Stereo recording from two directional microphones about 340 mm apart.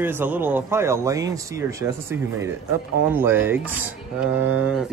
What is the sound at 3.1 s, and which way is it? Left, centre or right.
Speech, centre.